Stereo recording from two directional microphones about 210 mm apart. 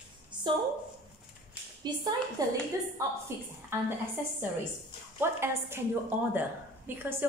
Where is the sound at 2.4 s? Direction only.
15° right (ahead or behind).